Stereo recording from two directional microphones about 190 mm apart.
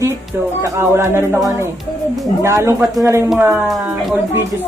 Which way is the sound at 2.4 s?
15° right (ahead or behind).